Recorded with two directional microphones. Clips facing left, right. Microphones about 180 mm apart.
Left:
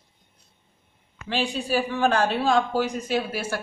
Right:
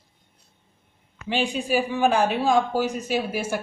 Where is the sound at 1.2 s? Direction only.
15° right (ahead or behind).